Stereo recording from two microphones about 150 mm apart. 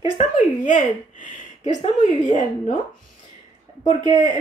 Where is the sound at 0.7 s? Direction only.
55° left (ahead or behind).